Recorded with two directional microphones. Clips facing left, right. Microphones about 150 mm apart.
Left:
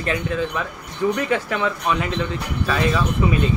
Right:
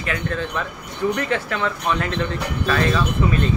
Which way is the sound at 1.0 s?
15° left (ahead or behind).